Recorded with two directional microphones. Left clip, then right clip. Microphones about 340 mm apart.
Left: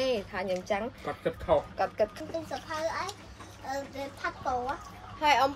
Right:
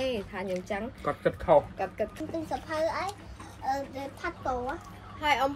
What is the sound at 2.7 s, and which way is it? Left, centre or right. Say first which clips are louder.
Speech: right 3 dB; centre.